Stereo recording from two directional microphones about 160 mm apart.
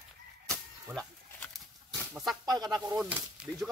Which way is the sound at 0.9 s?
5° left (ahead or behind).